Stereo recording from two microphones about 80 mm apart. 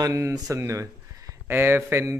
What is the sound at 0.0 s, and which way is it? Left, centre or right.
Speech, right.